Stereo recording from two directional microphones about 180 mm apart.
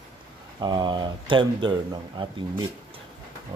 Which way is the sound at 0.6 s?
25° right (ahead or behind).